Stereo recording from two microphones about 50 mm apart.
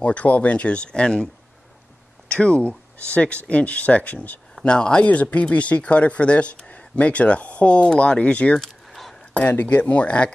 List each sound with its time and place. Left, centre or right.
0.0 s speech: left
8.6 s a sound: centre
9.3 s speech: left